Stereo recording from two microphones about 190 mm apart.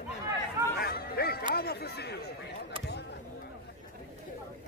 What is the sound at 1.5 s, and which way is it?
Speech, 55° left (ahead or behind).